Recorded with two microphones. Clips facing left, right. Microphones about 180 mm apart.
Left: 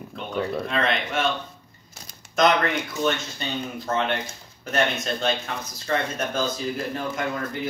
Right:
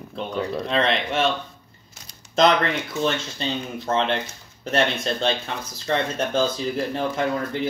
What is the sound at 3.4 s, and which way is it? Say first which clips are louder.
Speech: right 2 dB; 30° right (ahead or behind).